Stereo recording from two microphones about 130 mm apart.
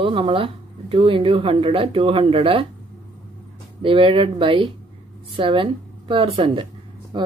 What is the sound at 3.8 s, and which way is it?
Speech, 40° right (ahead or behind).